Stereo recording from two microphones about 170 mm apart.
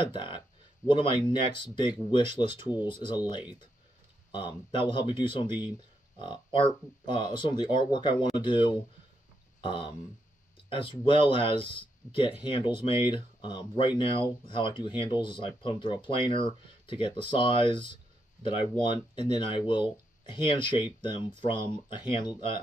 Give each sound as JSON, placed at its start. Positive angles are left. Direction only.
{"t": 0.0, "sound": "speech", "side_deg": 30}